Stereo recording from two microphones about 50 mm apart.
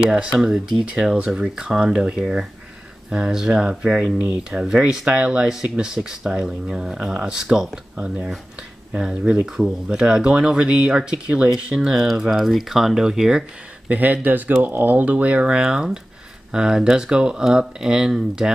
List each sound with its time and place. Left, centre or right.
0.1 s speech: centre
11.2 s speech: right
11.5 s speech: centre
11.9 s speech: centre
13.8 s speech: right; by 18.5 s centre